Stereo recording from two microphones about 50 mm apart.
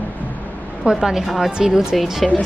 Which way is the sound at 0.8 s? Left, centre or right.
Centre.